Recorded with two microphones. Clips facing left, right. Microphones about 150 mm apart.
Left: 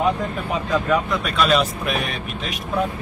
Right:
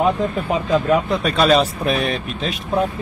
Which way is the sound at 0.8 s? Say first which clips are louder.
Right 4 dB; 30° right (ahead or behind).